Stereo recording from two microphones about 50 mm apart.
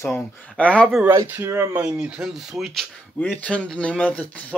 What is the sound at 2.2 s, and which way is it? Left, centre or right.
Speech, centre.